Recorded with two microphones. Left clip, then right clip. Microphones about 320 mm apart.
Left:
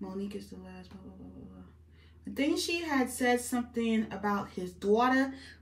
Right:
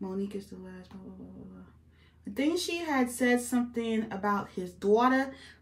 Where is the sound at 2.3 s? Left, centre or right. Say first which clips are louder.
Right 1 dB; centre.